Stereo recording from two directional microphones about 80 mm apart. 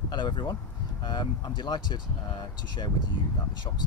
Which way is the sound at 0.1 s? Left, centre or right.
Left.